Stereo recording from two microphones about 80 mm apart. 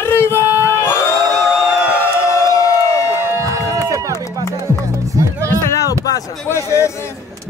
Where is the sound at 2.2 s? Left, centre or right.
Left.